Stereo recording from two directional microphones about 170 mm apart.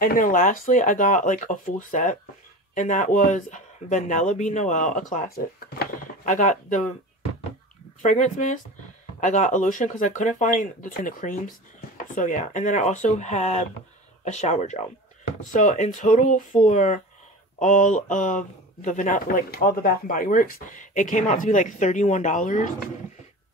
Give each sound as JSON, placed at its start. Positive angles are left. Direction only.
{"t": 0.0, "sound": "a man's voice", "side_deg": 55}
{"t": 8.0, "sound": "a man's voice", "side_deg": 45}